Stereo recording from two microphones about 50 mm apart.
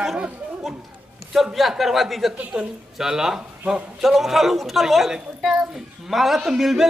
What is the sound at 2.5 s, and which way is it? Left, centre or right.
A woman's voice, centre.